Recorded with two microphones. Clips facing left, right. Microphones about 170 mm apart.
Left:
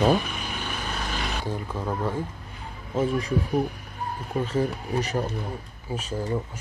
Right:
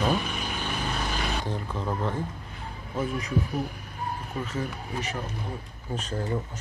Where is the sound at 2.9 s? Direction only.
30° left (ahead or behind).